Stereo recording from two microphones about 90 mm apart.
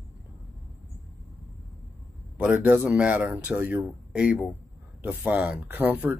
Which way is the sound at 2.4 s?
15° right (ahead or behind).